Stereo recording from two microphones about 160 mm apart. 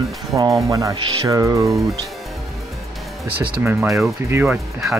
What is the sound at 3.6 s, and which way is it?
Speech, 10° right (ahead or behind).